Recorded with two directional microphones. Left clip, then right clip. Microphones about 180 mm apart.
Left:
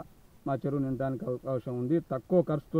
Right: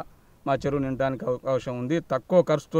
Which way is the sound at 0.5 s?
15° right (ahead or behind).